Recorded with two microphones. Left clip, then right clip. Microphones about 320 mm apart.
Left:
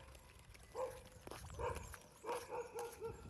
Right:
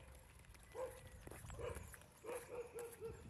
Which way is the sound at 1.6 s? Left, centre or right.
Centre.